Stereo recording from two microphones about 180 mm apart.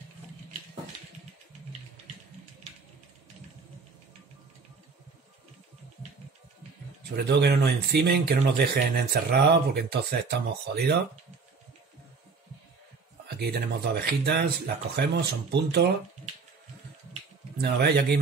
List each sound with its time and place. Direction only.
7.2 s speech: 65° right (ahead or behind)
13.3 s speech: 65° right (ahead or behind)
17.6 s speech: 65° right (ahead or behind)